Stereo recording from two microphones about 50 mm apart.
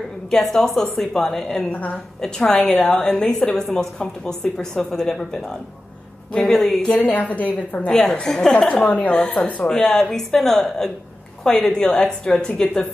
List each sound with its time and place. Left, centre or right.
0.3 s a woman's voice: centre
3.0 s a woman's voice: centre
7.0 s a woman's voice: left
8.3 s a woman's voice: centre
8.5 s a woman's voice: left